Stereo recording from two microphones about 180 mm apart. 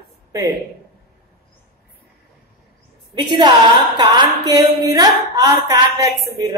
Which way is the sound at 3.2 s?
25° right (ahead or behind).